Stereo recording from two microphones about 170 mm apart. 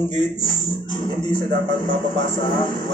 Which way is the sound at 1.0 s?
25° left (ahead or behind).